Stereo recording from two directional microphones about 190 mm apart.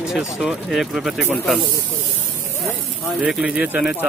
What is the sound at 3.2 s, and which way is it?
Speech, 5° right (ahead or behind).